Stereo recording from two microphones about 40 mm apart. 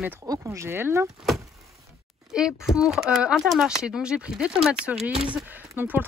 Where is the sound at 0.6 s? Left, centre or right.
Right.